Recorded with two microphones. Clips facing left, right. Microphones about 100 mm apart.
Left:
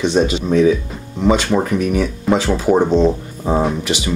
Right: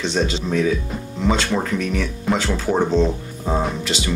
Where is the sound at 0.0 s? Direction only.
15° left (ahead or behind).